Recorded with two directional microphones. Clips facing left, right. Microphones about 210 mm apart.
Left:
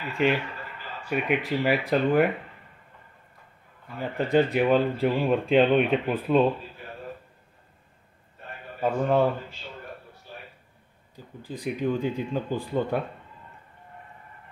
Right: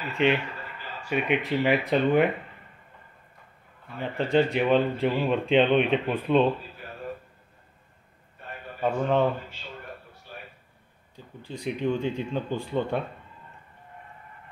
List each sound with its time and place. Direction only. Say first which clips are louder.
0.2 s speech: even; centre (ahead or behind)
4.0 s speech: left 1 dB; 5° left (ahead or behind)
8.8 s speech: left 1 dB; 5° left (ahead or behind)
11.4 s speech: even; centre (ahead or behind)